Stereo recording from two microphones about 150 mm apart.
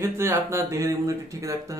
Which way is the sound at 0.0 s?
20° right (ahead or behind).